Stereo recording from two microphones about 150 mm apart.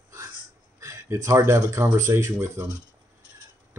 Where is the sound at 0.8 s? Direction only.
20° right (ahead or behind).